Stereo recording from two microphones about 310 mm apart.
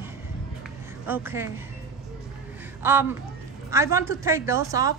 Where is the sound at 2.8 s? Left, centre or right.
Centre.